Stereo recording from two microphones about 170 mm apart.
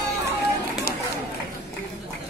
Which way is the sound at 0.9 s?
60° left (ahead or behind).